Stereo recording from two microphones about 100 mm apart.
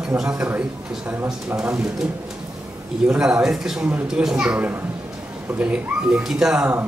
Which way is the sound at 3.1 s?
10° right (ahead or behind).